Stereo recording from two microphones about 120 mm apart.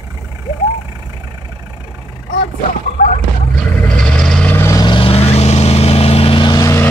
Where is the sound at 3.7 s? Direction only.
10° left (ahead or behind).